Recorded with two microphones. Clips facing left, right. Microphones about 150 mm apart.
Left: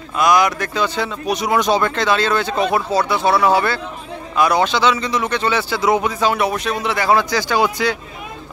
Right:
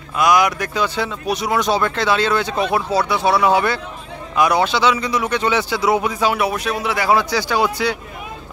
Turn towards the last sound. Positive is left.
turn(degrees=-5)  # may be behind; listen again after turning